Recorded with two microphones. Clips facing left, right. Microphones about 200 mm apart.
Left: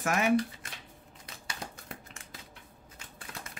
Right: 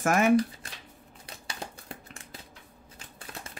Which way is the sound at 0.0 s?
50° right (ahead or behind).